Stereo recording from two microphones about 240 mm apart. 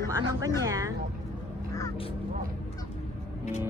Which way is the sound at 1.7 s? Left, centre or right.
Centre.